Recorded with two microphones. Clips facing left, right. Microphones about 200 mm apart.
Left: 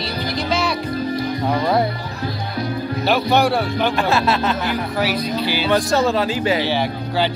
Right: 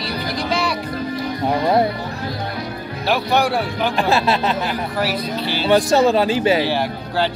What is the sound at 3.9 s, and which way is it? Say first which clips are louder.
Speech: right 4 dB; 15° right (ahead or behind).